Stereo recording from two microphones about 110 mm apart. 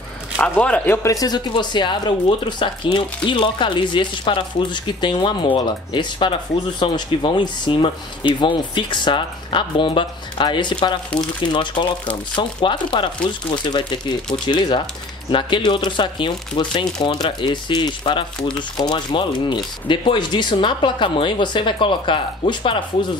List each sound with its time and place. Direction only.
0.4 s speech: 10° left (ahead or behind)
1.1 s speech: 40° left (ahead or behind)